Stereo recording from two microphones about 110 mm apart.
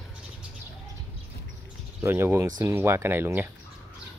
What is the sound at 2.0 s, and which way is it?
Speech, 25° right (ahead or behind).